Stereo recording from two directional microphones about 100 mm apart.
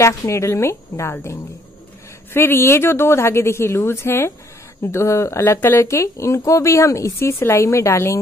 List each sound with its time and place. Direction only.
0.0 s speech: 30° left (ahead or behind)